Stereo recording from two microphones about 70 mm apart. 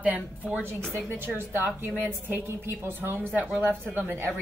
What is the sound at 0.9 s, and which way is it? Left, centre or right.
Speech, right.